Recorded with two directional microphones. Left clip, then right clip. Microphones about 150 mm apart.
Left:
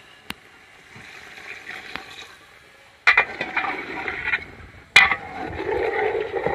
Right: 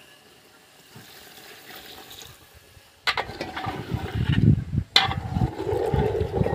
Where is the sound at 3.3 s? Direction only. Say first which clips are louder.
Left 7 dB; 25° right (ahead or behind).